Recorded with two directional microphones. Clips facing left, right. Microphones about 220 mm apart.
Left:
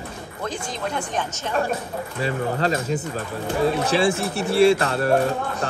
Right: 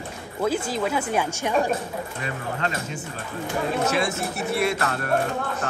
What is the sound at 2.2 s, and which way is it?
Speech, 35° left (ahead or behind).